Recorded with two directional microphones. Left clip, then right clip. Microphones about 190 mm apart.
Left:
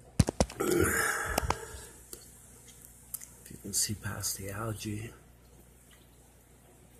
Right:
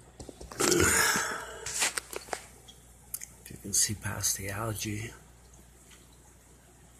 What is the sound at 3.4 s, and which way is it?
Speech, centre (ahead or behind).